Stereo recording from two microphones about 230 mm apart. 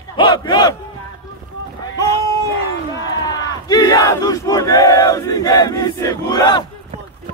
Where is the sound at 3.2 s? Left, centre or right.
Centre.